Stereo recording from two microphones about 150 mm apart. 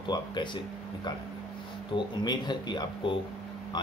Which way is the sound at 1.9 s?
30° left (ahead or behind).